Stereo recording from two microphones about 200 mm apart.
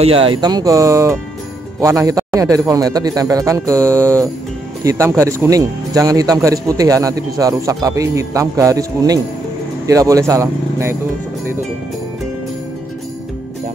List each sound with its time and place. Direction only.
0.0 s speech: 25° right (ahead or behind)